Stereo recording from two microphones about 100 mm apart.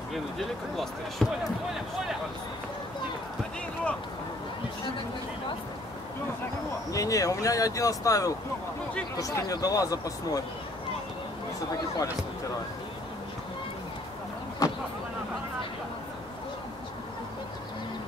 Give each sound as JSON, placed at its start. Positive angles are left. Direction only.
{"t": 0.1, "sound": "speech", "side_deg": 0}
{"t": 6.9, "sound": "speech", "side_deg": 35}
{"t": 14.6, "sound": "a sound", "side_deg": 35}